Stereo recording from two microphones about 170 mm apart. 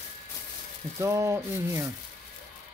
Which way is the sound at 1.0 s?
15° right (ahead or behind).